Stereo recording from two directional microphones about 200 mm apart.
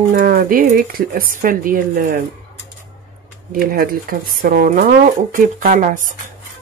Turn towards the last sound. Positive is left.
turn(degrees=-40)  # may be behind; listen again after turning